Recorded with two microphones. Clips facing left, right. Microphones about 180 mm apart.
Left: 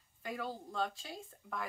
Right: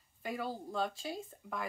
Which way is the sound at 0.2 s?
5° right (ahead or behind).